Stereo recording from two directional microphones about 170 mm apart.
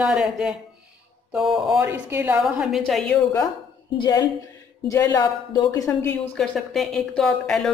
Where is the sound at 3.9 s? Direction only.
25° left (ahead or behind).